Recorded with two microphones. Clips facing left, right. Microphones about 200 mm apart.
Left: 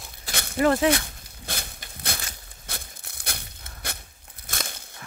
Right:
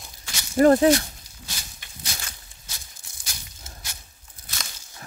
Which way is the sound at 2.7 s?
60° left (ahead or behind).